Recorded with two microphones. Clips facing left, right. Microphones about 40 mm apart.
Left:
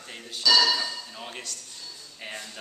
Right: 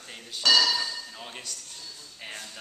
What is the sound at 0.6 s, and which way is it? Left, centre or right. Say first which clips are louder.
Speech: left 1 dB; left.